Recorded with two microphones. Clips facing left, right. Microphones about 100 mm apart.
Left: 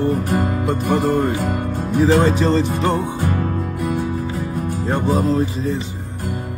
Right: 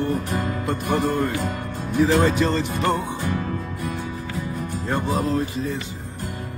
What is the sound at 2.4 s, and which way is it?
Music, centre (ahead or behind).